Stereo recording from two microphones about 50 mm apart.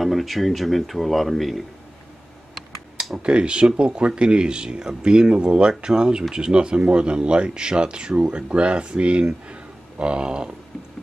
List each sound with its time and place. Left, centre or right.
0.0 s speech: centre
3.2 s speech: right